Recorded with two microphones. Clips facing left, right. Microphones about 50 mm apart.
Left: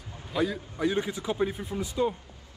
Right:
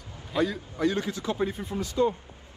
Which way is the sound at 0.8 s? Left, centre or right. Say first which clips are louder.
Right 1 dB; centre.